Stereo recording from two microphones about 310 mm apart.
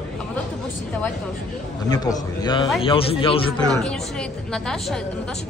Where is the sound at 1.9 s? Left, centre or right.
Centre.